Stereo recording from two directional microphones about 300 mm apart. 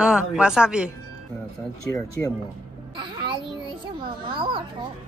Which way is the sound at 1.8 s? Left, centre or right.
Centre.